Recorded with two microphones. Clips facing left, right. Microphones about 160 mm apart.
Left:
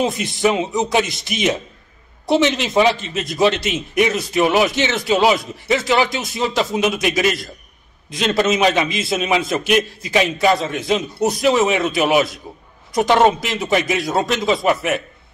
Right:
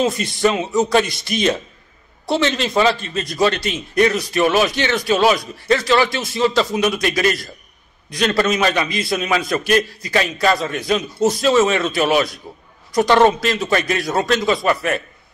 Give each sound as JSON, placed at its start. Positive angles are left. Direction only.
{"t": 0.0, "sound": "a man's voice", "side_deg": 20}